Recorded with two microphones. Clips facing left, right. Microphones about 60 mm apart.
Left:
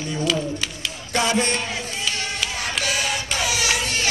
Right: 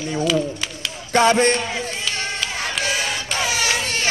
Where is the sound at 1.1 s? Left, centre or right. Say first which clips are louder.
Right 6 dB; right.